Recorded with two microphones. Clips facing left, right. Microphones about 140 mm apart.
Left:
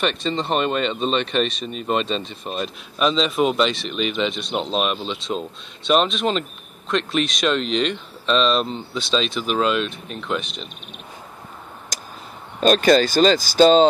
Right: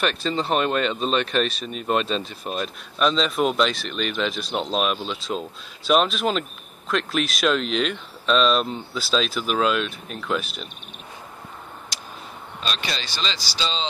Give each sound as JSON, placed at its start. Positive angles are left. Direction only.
{"t": 0.0, "sound": "speech", "side_deg": 0}
{"t": 11.9, "sound": "tick", "side_deg": 45}
{"t": 12.5, "sound": "speech", "side_deg": 45}